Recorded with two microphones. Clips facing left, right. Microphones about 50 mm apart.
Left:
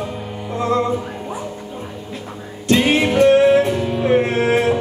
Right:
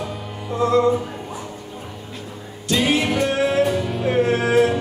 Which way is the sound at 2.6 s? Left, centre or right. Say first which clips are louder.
Left 4 dB; left.